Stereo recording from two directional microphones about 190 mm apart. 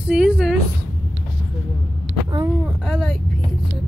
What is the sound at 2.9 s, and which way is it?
Vehicle, 5° left (ahead or behind).